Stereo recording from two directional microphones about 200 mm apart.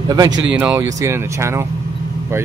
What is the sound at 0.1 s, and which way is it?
Speech, 20° right (ahead or behind).